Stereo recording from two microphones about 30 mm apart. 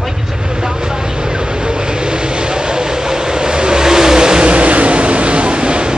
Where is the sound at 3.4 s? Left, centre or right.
Right.